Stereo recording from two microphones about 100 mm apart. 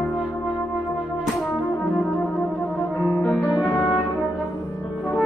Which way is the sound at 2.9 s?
25° left (ahead or behind).